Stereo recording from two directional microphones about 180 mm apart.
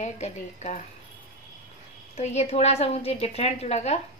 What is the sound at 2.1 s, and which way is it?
A woman's voice, 35° left (ahead or behind).